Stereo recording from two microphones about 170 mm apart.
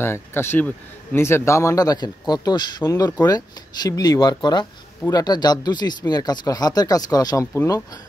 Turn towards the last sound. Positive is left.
turn(degrees=15)  # may be behind; listen again after turning